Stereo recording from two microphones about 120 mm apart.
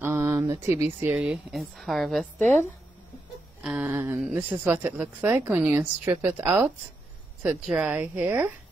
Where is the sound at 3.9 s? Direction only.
15° right (ahead or behind).